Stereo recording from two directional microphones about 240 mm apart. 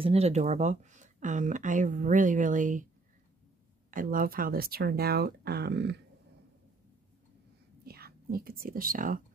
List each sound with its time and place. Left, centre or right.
0.0 s speech: right
3.9 s speech: right
7.8 s speech: right